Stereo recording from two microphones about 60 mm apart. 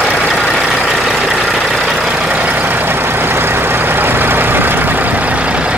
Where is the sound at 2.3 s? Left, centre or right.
Right.